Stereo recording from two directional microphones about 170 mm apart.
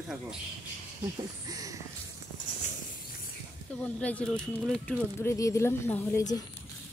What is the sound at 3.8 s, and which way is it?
Speech, 5° left (ahead or behind).